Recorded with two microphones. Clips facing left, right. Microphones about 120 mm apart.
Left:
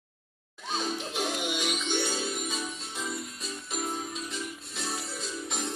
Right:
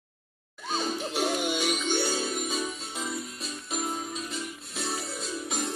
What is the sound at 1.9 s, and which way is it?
Music, 40° right (ahead or behind).